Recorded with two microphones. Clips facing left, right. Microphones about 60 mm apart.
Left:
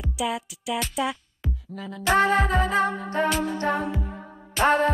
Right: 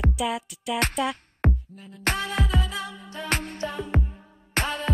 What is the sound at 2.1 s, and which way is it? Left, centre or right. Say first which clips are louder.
Music: left 8 dB; left.